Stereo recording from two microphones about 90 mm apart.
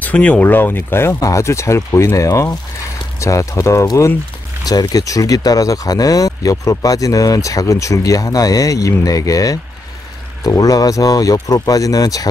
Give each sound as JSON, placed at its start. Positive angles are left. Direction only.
{"t": 0.0, "sound": "speech", "side_deg": 15}
{"t": 4.6, "sound": "speech", "side_deg": 50}